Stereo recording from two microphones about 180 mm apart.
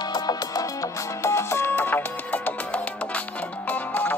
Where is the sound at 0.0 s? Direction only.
20° left (ahead or behind).